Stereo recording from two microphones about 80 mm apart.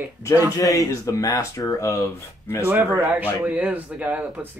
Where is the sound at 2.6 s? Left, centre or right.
Right.